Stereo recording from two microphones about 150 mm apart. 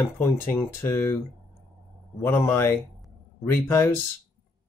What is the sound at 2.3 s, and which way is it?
Speech, 15° left (ahead or behind).